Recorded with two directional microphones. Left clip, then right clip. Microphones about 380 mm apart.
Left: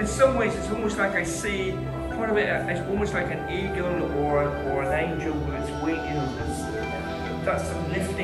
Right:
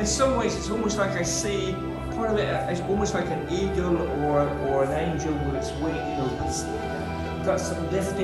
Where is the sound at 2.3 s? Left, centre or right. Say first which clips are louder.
Left 3 dB; centre.